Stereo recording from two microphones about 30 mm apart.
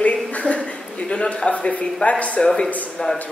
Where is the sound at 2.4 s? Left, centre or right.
Left.